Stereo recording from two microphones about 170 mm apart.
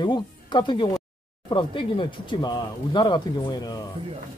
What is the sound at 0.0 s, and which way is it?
Speech, 25° left (ahead or behind).